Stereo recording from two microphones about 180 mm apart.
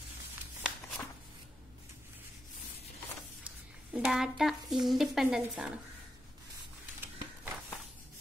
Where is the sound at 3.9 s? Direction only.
5° right (ahead or behind).